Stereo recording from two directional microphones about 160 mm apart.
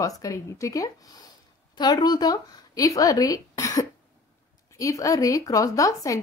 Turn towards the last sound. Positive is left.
turn(degrees=20)  # may be behind; listen again after turning